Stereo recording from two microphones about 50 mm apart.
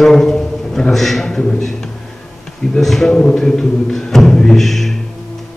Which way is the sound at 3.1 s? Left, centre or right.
Centre.